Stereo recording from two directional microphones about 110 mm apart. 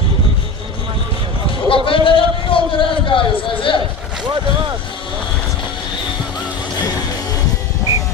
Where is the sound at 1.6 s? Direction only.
55° left (ahead or behind).